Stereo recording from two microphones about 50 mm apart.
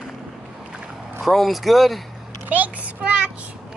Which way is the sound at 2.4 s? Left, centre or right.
Right.